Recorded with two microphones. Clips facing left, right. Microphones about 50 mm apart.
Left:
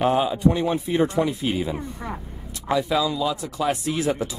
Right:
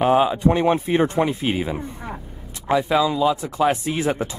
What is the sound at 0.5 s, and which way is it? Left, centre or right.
Speech, right.